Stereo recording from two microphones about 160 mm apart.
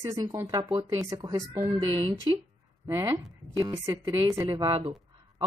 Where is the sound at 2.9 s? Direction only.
20° right (ahead or behind).